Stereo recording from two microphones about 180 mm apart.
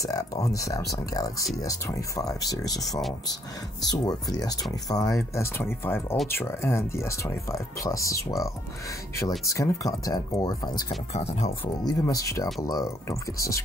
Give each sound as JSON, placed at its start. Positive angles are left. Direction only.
{"t": 0.0, "sound": "speech", "side_deg": 20}
{"t": 9.5, "sound": "speech", "side_deg": 20}
{"t": 11.1, "sound": "speech", "side_deg": 35}
{"t": 11.6, "sound": "speech", "side_deg": 20}